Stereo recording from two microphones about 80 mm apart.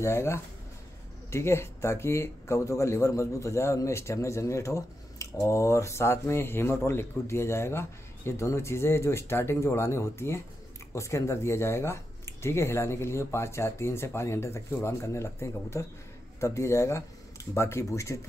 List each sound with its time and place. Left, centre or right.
0.0 s speech: left